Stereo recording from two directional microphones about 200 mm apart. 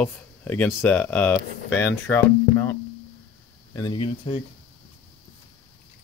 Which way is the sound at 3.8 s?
25° left (ahead or behind).